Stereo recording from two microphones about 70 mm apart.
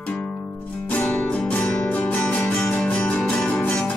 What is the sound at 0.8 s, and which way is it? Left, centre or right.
Music, left.